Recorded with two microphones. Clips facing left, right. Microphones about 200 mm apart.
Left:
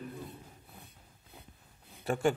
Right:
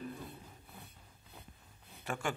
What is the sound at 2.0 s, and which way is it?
Speech, 35° left (ahead or behind).